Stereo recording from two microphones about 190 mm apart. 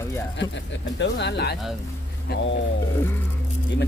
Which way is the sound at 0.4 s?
70° left (ahead or behind).